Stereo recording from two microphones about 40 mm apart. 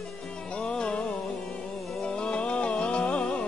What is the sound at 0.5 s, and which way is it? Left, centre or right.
Music, left.